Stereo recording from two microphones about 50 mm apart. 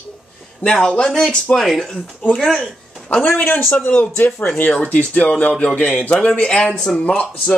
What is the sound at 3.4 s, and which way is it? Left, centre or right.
Speech, left.